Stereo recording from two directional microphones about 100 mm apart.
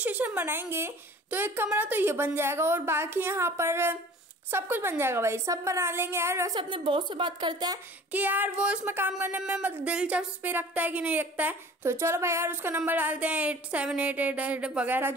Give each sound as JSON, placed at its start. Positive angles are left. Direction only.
{"t": 0.0, "sound": "a woman's voice", "side_deg": -15}
{"t": 6.5, "sound": "a woman's voice", "side_deg": -55}
{"t": 8.1, "sound": "a woman's voice", "side_deg": -15}
{"t": 8.8, "sound": "a woman's voice", "side_deg": -20}